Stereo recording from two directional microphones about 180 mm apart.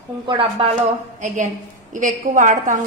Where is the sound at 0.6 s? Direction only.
30° right (ahead or behind).